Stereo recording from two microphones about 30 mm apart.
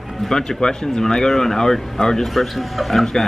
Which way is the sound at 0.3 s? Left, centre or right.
Left.